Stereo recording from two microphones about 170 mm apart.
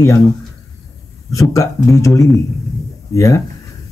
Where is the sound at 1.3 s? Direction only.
20° left (ahead or behind).